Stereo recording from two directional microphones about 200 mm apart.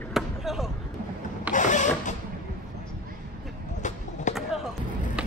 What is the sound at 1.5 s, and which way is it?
Mechanisms, 40° left (ahead or behind).